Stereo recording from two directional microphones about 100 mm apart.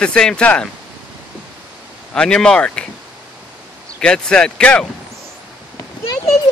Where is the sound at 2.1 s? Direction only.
10° left (ahead or behind).